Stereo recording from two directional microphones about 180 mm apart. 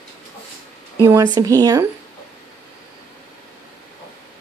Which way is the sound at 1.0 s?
25° right (ahead or behind).